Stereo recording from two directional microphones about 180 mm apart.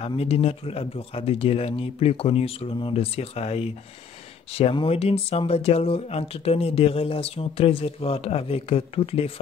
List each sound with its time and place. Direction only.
0.0 s speech: 35° left (ahead or behind)